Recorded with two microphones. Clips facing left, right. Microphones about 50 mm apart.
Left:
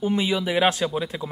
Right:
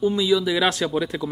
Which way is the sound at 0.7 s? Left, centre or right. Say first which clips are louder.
Right 1 dB; centre.